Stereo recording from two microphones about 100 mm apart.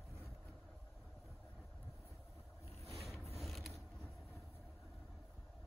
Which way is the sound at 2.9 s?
Centre (ahead or behind).